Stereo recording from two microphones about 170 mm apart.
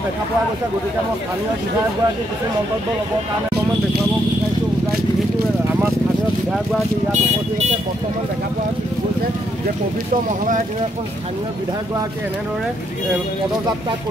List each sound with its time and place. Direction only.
7.1 s speech: 40° right (ahead or behind)